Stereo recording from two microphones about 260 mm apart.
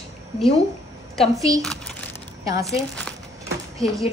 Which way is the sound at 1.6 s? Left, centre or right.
Centre.